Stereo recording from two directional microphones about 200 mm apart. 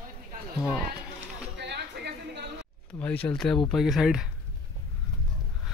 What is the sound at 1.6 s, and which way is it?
Chatter, 60° right (ahead or behind).